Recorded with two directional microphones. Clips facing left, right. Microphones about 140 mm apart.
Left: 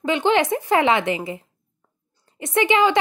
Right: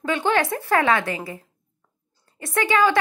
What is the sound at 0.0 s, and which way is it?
A woman's voice, 20° left (ahead or behind).